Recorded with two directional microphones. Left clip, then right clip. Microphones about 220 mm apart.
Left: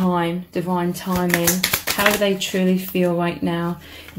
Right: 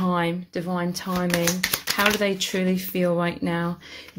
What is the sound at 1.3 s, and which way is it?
Speech, 20° right (ahead or behind).